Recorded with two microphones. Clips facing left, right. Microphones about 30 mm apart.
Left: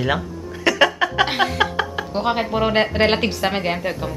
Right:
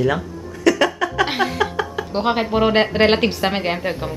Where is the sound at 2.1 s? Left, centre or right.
Centre.